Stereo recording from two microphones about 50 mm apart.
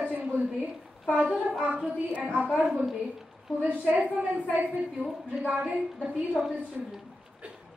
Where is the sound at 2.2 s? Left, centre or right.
Right.